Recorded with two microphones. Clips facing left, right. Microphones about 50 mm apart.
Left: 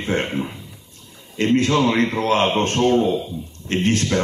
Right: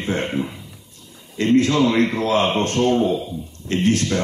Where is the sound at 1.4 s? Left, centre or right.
Left.